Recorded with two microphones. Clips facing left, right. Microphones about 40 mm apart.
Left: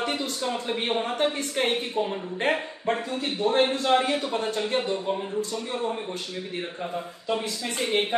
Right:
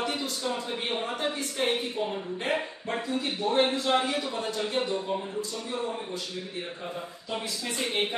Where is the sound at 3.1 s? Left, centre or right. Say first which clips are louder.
Even; left.